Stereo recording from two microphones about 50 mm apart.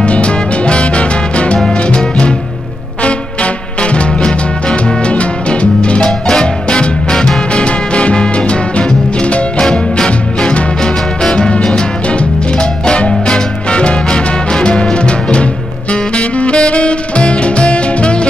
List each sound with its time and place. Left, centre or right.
0.0 s music: left
3.8 s music: left
15.9 s saxophone: left